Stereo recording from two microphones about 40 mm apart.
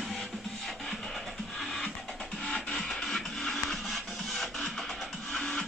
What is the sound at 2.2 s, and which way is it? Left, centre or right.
Music, centre.